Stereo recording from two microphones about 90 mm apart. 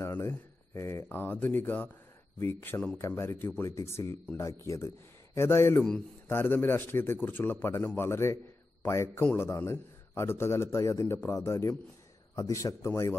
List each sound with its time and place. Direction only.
0.0 s speech: 25° left (ahead or behind)
9.2 s speech: 20° left (ahead or behind)
9.5 s speech: 30° left (ahead or behind)